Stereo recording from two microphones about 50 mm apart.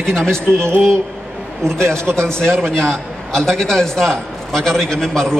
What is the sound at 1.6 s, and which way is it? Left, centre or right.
A man's voice, centre.